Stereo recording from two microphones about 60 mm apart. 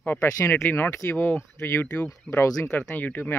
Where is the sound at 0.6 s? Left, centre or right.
Left.